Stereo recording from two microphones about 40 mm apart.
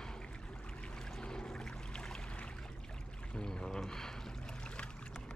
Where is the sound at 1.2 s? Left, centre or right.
Left.